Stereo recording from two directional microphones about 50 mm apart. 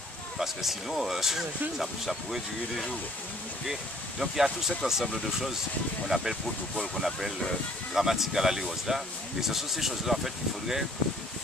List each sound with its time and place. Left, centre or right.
0.4 s speech: centre
4.2 s speech: centre